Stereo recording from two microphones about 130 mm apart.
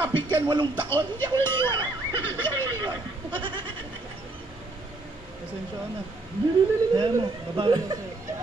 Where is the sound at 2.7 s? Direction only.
35° right (ahead or behind).